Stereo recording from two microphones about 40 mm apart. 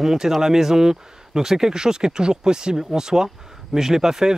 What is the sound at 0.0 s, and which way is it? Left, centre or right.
Speech, centre.